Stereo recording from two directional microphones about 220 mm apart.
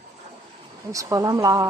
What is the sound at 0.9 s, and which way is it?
Speech, 15° right (ahead or behind).